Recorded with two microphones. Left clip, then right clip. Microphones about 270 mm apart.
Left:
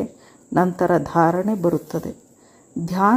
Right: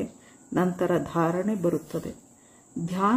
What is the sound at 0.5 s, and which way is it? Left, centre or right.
Speech, centre.